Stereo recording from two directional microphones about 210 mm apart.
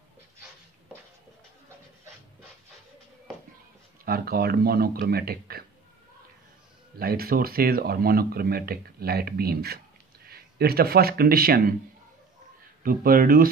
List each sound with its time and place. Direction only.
4.0 s speech: 45° right (ahead or behind)
7.0 s speech: 45° right (ahead or behind)
12.8 s speech: 45° right (ahead or behind)